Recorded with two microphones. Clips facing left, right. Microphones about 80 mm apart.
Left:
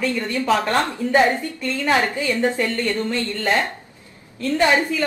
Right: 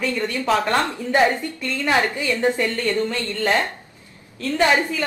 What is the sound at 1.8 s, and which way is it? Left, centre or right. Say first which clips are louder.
Speech: left 1 dB; left.